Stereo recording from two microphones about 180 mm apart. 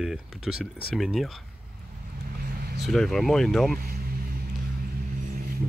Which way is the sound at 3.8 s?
60° right (ahead or behind).